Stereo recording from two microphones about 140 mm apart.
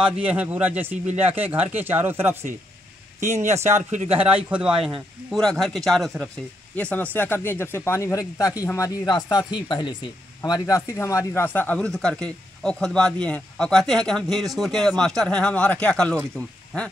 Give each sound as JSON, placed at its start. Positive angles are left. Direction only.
{"t": 0.0, "sound": "a man's voice", "side_deg": -10}
{"t": 3.2, "sound": "speech", "side_deg": -55}
{"t": 4.4, "sound": "a man's voice", "side_deg": -10}
{"t": 5.3, "sound": "speech", "side_deg": 5}